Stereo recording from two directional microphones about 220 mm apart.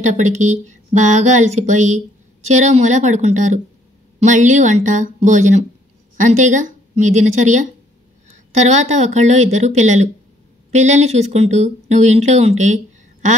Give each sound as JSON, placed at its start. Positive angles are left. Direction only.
{"t": 0.0, "sound": "speech", "side_deg": -35}